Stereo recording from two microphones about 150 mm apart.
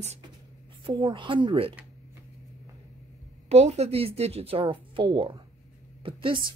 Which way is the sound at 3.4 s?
45° right (ahead or behind).